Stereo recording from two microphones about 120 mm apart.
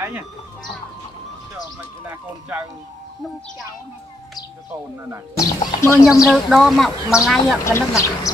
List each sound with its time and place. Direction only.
5.4 s speech: 25° left (ahead or behind)
6.3 s speech: centre (ahead or behind)
7.6 s speech: 25° left (ahead or behind)